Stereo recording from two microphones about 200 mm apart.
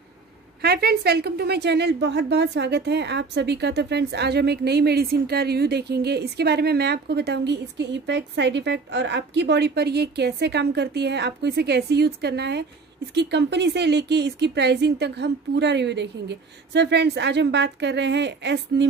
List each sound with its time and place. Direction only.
0.6 s a woman's voice: 55° right (ahead or behind)